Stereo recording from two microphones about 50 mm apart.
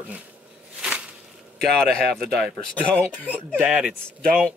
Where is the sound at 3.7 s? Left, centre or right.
Right.